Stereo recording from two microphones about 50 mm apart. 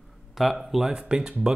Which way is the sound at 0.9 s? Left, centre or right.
Right.